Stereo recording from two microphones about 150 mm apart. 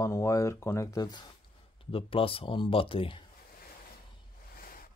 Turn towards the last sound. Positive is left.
turn(degrees=75)  # may be behind; listen again after turning